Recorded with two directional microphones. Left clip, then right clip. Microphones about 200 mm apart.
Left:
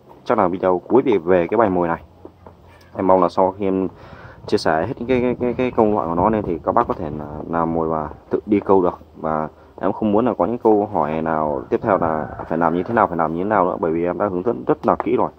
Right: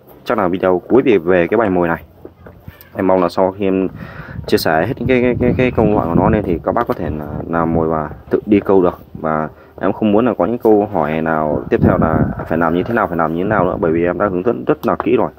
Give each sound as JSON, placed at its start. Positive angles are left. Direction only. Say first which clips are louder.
{"t": 0.3, "sound": "speech", "louder": "right 2 dB", "side_deg": -20}
{"t": 3.0, "sound": "speech", "louder": "right 2 dB", "side_deg": -20}